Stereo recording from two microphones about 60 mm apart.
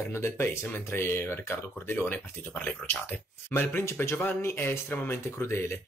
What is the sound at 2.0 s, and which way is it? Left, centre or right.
Speech, left.